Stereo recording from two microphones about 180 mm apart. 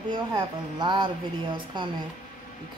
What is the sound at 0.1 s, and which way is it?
Speech, 25° right (ahead or behind).